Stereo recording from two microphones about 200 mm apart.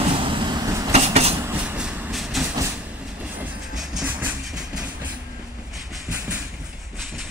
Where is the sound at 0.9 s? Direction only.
30° right (ahead or behind).